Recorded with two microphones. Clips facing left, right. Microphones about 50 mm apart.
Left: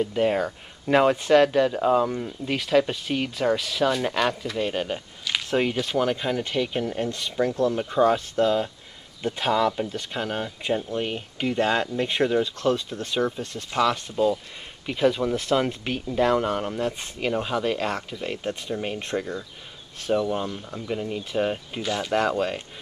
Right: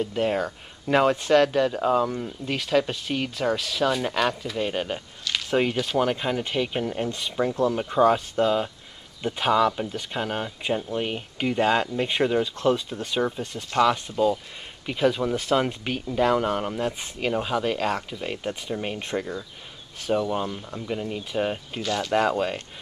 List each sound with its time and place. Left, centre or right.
0.0 s speech: centre
5.2 s a sound: centre
5.5 s speech: centre
12.5 s speech: centre
21.8 s speech: centre
22.1 s speech: centre